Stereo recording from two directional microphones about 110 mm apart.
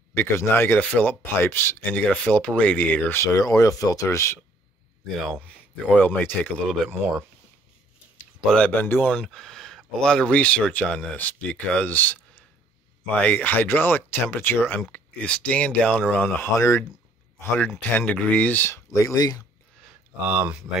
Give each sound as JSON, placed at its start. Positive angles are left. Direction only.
{"t": 0.1, "sound": "speech", "side_deg": 20}
{"t": 3.3, "sound": "speech", "side_deg": 30}
{"t": 5.9, "sound": "speech", "side_deg": 15}
{"t": 8.4, "sound": "speech", "side_deg": 0}
{"t": 8.6, "sound": "speech", "side_deg": 15}
{"t": 9.1, "sound": "speech", "side_deg": 5}
{"t": 16.5, "sound": "speech", "side_deg": 25}
{"t": 17.9, "sound": "speech", "side_deg": 15}
{"t": 18.9, "sound": "speech", "side_deg": 30}
{"t": 20.2, "sound": "speech", "side_deg": -15}